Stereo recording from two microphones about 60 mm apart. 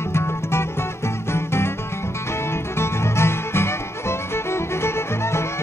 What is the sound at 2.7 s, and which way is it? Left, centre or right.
Music, left.